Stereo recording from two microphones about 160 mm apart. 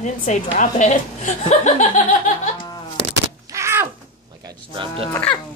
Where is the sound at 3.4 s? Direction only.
15° right (ahead or behind).